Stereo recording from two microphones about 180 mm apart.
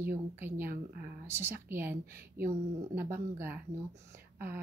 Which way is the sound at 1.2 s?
15° right (ahead or behind).